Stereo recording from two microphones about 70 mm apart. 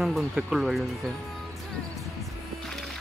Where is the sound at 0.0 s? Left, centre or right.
Centre.